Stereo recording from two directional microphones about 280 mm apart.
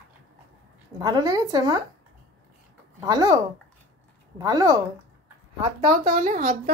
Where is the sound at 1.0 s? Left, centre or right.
Centre.